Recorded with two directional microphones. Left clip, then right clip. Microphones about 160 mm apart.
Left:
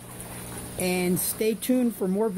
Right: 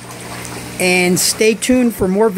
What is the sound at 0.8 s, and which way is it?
Speech, 5° right (ahead or behind).